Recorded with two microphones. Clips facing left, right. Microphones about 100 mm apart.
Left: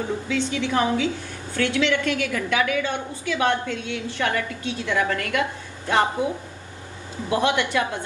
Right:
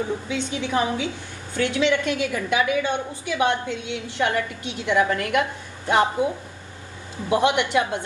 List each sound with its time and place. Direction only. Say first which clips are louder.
0.3 s a woman's voice: left 1 dB; 20° right (ahead or behind)